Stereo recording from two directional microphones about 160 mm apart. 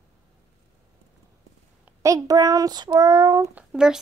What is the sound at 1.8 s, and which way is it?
A child's voice, 20° right (ahead or behind).